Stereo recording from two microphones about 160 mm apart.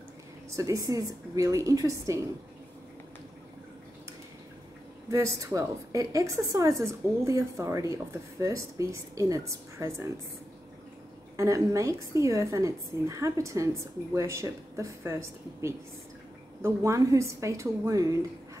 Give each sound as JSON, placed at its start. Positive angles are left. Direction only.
{"t": 0.6, "sound": "a woman's voice", "side_deg": -20}
{"t": 5.1, "sound": "a woman's voice", "side_deg": -20}
{"t": 11.3, "sound": "a woman's voice", "side_deg": -20}